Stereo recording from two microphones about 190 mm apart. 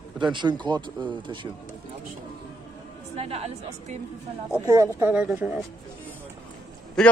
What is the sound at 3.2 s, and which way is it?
Speech, 30° right (ahead or behind).